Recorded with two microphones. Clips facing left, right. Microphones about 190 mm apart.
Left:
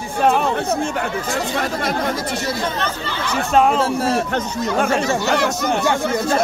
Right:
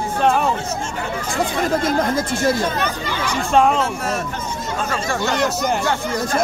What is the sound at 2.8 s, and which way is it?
Speech, 10° right (ahead or behind).